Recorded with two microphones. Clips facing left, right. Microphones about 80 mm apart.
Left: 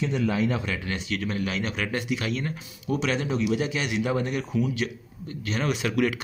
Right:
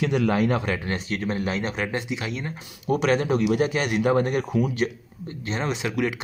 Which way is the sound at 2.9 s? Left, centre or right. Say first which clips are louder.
Right 5 dB; right.